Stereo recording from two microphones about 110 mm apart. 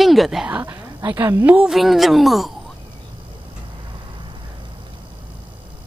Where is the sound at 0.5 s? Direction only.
15° right (ahead or behind).